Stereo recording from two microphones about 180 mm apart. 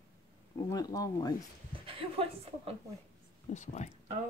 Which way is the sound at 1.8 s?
30° right (ahead or behind).